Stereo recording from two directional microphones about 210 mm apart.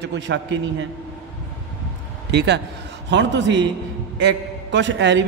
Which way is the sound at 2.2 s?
55° right (ahead or behind).